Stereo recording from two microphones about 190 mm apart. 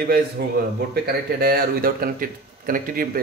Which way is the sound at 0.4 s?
60° right (ahead or behind).